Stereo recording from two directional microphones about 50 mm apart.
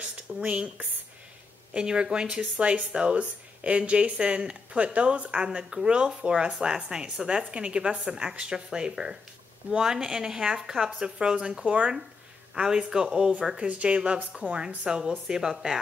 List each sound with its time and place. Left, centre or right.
0.0 s speech: right; by 15.8 s centre